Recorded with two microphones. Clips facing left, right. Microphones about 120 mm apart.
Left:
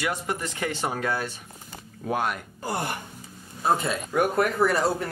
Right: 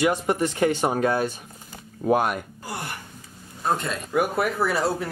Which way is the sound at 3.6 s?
5° left (ahead or behind).